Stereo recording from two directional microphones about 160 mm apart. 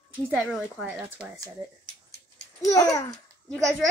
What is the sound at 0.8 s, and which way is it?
Speech, 5° right (ahead or behind).